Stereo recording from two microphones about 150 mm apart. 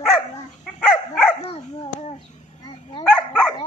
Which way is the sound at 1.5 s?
40° left (ahead or behind).